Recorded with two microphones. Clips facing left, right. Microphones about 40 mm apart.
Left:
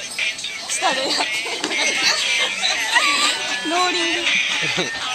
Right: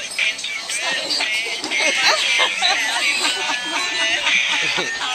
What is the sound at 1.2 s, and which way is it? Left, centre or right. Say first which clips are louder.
Music: right 1 dB; centre.